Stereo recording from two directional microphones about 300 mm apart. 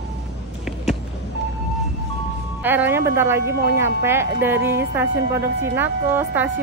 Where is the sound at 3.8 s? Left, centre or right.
Centre.